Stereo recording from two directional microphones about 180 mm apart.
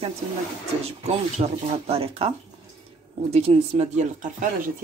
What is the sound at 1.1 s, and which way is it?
Speech, 35° right (ahead or behind).